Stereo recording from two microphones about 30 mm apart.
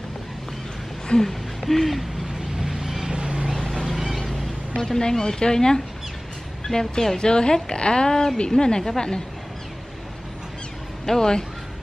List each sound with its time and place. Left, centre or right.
1.1 s speech: left
1.7 s hoot: centre
2.6 s vehicle: centre
3.2 s vehicle: right
3.5 s a sound: centre
4.7 s speech: left
11.1 s speech: left